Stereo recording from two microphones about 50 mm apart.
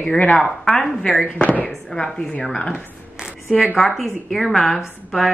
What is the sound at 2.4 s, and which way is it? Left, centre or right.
Speech, centre.